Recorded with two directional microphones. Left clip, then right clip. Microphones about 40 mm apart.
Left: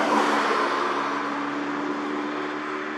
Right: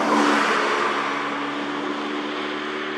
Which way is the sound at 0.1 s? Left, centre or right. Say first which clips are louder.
Right 3 dB; right.